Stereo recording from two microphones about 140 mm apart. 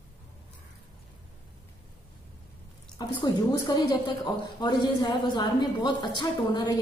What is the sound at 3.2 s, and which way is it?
A woman's voice, 25° left (ahead or behind).